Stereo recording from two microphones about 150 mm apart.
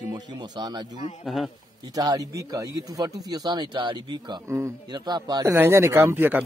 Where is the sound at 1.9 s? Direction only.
25° right (ahead or behind).